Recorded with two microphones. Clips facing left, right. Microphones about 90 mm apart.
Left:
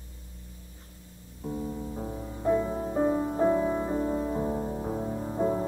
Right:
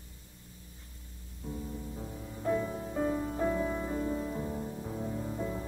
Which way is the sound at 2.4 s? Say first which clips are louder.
Left 5 dB; 25° left (ahead or behind).